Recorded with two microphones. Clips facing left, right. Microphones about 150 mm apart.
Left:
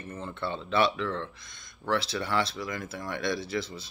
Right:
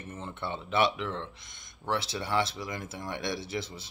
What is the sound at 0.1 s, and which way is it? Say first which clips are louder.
Speech: left 3 dB; 20° right (ahead or behind).